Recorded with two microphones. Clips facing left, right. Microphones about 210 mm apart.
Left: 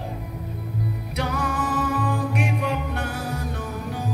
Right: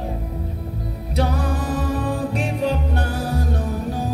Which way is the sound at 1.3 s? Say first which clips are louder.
Right 2 dB; 35° right (ahead or behind).